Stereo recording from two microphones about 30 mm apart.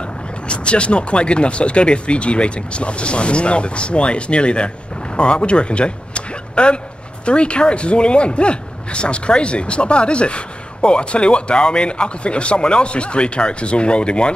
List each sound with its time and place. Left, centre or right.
0.5 s speech: left